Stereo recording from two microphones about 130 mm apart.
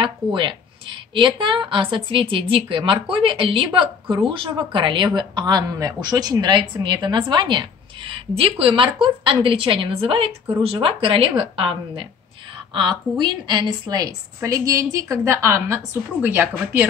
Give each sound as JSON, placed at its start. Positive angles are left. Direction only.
{"t": 0.0, "sound": "a woman's voice", "side_deg": -40}
{"t": 13.2, "sound": "a woman's voice", "side_deg": -35}